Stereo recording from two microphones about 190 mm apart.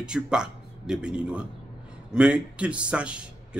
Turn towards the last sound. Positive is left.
turn(degrees=-5)  # may be behind; listen again after turning